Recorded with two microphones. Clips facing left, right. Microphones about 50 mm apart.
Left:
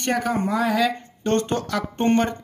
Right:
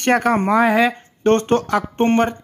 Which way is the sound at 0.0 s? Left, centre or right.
Right.